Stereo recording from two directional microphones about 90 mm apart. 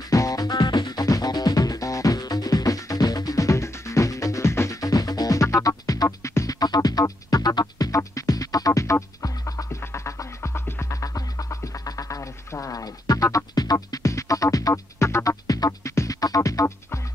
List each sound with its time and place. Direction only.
0.1 s music: 40° left (ahead or behind)
6.6 s music: 45° left (ahead or behind)